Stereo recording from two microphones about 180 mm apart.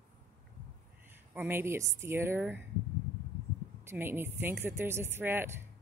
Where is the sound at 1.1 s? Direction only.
10° right (ahead or behind).